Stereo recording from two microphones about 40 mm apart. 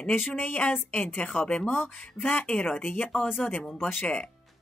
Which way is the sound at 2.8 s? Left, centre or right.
Left.